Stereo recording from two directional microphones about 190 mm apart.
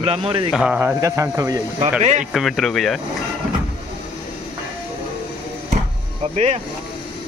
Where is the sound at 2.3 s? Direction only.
Centre (ahead or behind).